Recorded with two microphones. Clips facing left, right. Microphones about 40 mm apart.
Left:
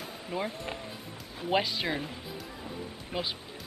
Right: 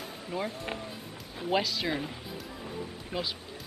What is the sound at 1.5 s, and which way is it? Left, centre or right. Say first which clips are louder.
Speech: even; centre.